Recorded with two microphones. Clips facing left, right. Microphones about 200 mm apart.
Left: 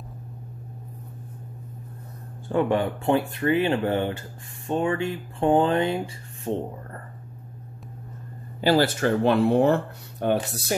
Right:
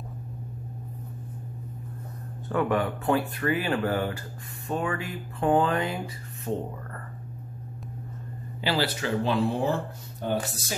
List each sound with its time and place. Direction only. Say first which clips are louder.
2.5 s speech: left 3 dB; 25° left (ahead or behind)
8.5 s speech: left 7 dB; 45° left (ahead or behind); by 10.8 s 65° left (ahead or behind)